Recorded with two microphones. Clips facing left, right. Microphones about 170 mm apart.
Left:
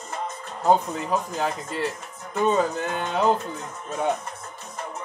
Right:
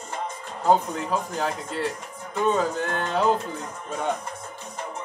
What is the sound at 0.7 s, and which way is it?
Speech, centre (ahead or behind).